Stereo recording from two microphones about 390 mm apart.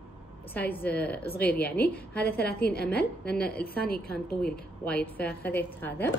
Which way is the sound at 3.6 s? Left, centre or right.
Left.